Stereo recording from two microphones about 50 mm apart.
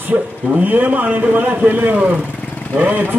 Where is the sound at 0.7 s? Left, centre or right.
Right.